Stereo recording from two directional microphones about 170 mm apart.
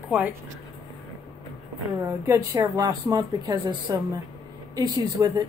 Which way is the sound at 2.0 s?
15° right (ahead or behind).